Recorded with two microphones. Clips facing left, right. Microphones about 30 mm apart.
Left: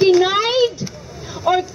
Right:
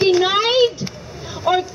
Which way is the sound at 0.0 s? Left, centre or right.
Centre.